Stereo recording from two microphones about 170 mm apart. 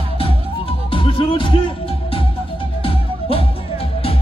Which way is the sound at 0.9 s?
30° left (ahead or behind).